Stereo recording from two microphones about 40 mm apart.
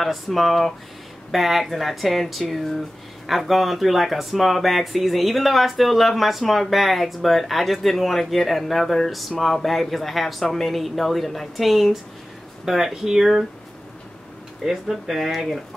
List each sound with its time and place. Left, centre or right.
0.0 s speech: centre
14.6 s speech: centre